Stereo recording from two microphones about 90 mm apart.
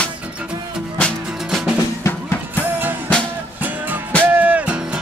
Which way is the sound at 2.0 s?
30° left (ahead or behind).